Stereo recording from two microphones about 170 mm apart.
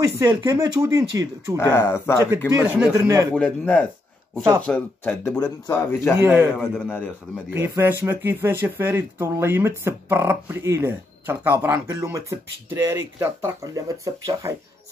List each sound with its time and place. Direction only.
0.0 s speech: 20° right (ahead or behind)
1.6 s speech: 15° left (ahead or behind)
2.5 s speech: 15° right (ahead or behind)
3.3 s speech: 5° left (ahead or behind)
6.2 s speech: 10° right (ahead or behind)
6.6 s speech: 10° left (ahead or behind)
7.5 s speech: 15° right (ahead or behind)